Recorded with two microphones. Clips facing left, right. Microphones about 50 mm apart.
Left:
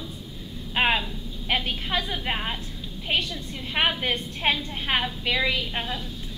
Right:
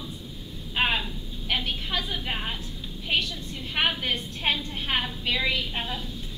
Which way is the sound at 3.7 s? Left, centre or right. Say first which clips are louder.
Left 2 dB; left.